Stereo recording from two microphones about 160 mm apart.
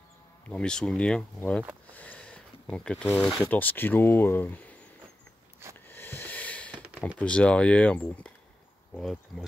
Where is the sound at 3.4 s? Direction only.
10° left (ahead or behind).